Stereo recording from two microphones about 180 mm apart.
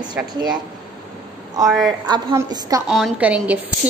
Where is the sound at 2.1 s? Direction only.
25° right (ahead or behind).